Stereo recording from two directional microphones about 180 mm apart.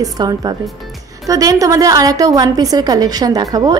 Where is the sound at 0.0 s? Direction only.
25° right (ahead or behind).